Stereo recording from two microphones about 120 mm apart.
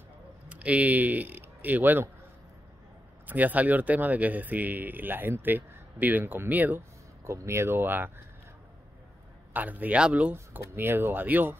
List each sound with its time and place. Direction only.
0.5 s speech: 10° right (ahead or behind)
3.3 s speech: 15° right (ahead or behind)
9.5 s speech: 15° right (ahead or behind)